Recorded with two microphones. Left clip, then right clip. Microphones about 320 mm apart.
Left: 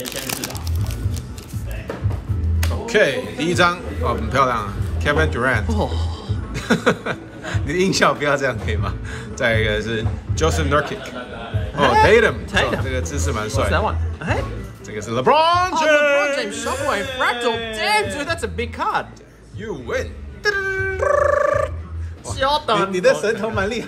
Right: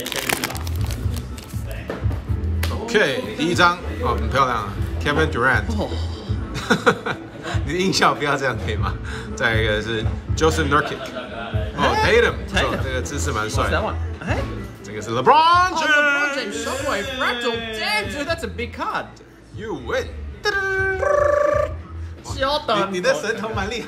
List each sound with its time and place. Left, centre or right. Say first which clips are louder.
2.9 s a man's voice: left 2 dB; centre
11.8 s music: left 5 dB; left
12.1 s speech: left 2 dB; centre
12.4 s a man's voice: left 2 dB; left
12.8 s speech: even; centre
13.7 s speech: left 2 dB; left
15.0 s speech: right 1 dB; centre
16.3 s a woman's voice: left 2 dB; left
19.6 s speech: even; centre
21.0 s a sound: left 2 dB; left
22.4 s a woman's voice: left 2 dB; left
22.8 s speech: left 4 dB; centre